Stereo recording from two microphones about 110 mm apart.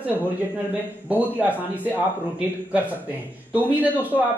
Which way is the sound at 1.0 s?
15° right (ahead or behind).